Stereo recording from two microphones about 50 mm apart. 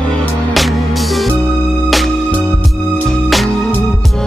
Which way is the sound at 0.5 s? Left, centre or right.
Centre.